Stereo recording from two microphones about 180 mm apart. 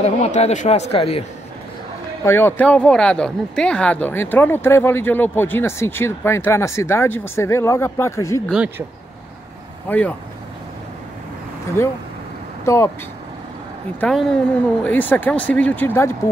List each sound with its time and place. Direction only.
0.0 s speech: 40° left (ahead or behind)
2.2 s speech: 10° left (ahead or behind)
9.8 s speech: 10° left (ahead or behind)
11.8 s speech: 15° left (ahead or behind)
13.9 s a woman's voice: 5° left (ahead or behind)